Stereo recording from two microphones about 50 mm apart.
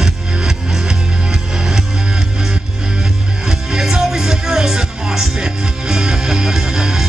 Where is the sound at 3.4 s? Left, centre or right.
Centre.